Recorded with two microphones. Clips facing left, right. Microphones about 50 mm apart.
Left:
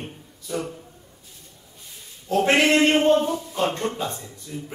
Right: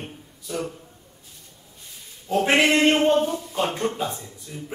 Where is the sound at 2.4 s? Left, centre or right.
Centre.